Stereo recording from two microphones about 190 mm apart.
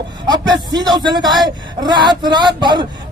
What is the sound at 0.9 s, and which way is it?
Speech, 20° right (ahead or behind).